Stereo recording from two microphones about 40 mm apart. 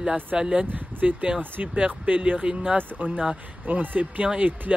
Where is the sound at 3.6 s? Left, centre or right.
Right.